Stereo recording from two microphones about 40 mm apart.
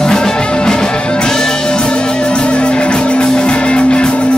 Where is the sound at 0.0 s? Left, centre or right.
Centre.